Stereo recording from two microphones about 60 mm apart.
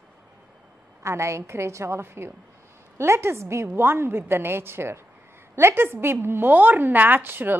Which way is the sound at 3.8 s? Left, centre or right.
Right.